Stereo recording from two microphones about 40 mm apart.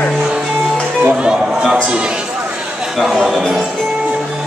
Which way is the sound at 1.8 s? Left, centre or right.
Right.